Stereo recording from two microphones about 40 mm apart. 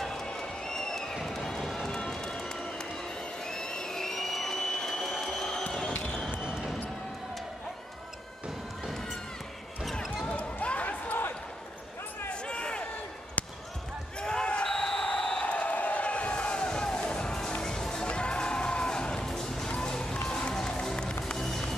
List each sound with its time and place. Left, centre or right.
0.3 s crowd: centre
1.1 s music: centre
1.9 s music: centre
3.4 s a sound: centre
5.0 s train: centre
10.2 s basketball bounce: left
12.4 s a sound: left
14.2 s basketball bounce: left
15.0 s a sound: centre
15.4 s music: left; by 19.7 s centre
19.8 s run: centre
20.3 s music: centre